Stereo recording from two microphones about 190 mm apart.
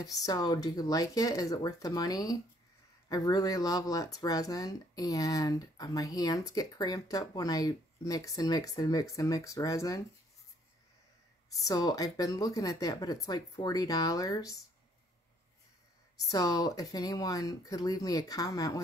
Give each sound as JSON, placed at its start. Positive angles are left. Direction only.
{"t": 0.0, "sound": "speech", "side_deg": 20}
{"t": 11.6, "sound": "speech", "side_deg": 20}
{"t": 16.3, "sound": "speech", "side_deg": 20}